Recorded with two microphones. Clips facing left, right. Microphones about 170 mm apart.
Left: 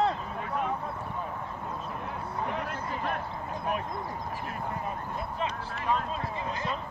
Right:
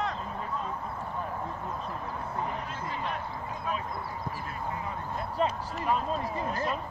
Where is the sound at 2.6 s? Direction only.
60° left (ahead or behind).